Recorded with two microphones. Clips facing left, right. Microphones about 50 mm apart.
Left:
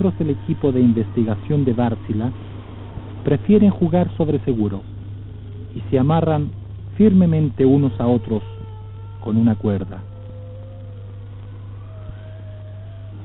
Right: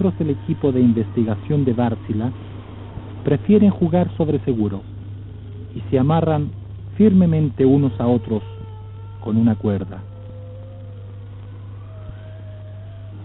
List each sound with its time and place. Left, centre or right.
0.0 s speech: right